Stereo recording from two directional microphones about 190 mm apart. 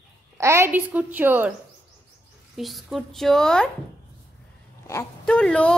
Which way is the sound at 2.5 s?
Centre (ahead or behind).